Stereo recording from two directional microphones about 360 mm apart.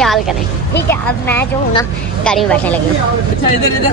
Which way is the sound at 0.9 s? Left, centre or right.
Centre.